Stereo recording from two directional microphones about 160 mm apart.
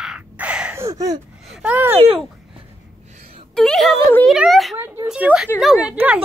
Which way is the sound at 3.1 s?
40° right (ahead or behind).